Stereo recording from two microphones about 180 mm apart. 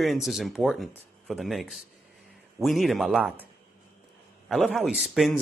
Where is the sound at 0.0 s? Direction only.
Centre (ahead or behind).